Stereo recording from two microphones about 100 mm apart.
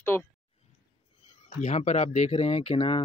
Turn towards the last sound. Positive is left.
turn(degrees=60)  # may be behind; listen again after turning